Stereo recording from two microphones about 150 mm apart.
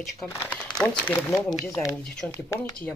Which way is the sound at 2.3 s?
15° left (ahead or behind).